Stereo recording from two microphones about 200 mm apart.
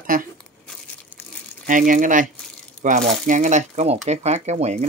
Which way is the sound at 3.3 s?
35° right (ahead or behind).